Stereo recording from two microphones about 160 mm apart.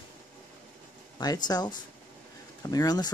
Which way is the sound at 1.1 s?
25° left (ahead or behind).